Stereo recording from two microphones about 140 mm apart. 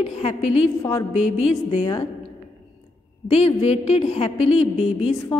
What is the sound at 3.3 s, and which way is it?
A woman's voice, 50° left (ahead or behind).